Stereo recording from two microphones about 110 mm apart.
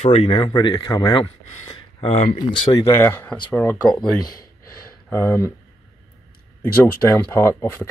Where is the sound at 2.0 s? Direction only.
60° left (ahead or behind).